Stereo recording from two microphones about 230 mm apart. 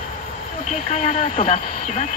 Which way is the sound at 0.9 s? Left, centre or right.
Left.